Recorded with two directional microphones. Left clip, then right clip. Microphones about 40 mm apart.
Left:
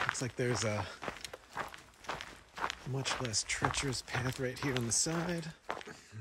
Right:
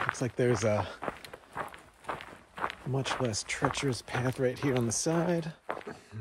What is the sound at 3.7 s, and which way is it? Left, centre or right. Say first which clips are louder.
Speech: right 3 dB; right.